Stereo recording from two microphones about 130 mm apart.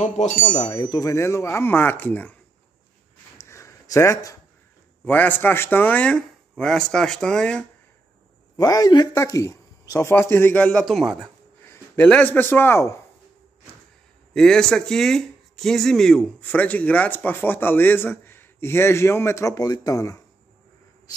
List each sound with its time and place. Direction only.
0.0 s speech: 65° left (ahead or behind)
0.6 s speech: 35° left (ahead or behind)
1.1 s speech: 20° left (ahead or behind)
3.4 s a sound: 25° left (ahead or behind)
5.0 s speech: 15° left (ahead or behind)
8.5 s speech: 30° left (ahead or behind)
10.3 s speech: 10° left (ahead or behind)
11.6 s a sound: 20° left (ahead or behind)
12.1 s speech: 15° left (ahead or behind)
14.3 s speech: 5° left (ahead or behind); by 20.2 s 25° left (ahead or behind)